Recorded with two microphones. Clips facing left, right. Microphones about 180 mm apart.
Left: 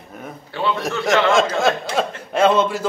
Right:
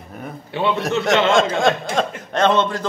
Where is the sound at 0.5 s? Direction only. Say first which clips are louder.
Right 2 dB; 20° right (ahead or behind).